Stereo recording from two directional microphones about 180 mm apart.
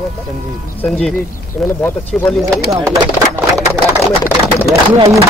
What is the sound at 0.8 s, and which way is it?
Speech, centre (ahead or behind).